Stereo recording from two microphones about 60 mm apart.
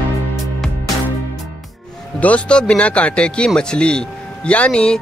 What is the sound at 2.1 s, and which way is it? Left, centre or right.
A man's voice, left.